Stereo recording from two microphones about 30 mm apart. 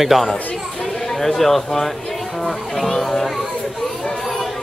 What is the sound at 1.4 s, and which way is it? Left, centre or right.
Speech, centre.